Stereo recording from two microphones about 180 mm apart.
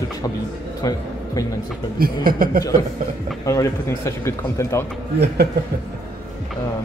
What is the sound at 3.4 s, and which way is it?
Speech, 15° left (ahead or behind).